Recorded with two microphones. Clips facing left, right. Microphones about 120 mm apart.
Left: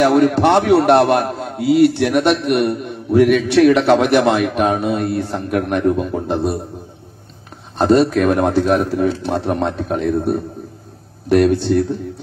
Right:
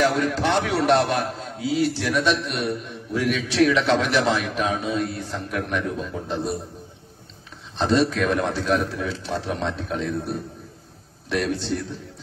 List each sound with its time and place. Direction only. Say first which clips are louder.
0.0 s a man's voice: left 9 dB; 60° left (ahead or behind)
7.7 s a man's voice: left 8 dB; 55° left (ahead or behind)